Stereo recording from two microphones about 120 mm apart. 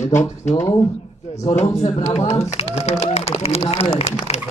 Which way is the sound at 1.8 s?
65° left (ahead or behind).